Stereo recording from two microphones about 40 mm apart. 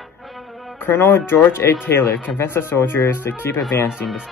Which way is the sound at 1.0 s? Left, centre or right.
Left.